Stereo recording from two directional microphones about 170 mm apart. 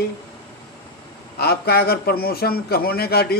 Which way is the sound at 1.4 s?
65° left (ahead or behind).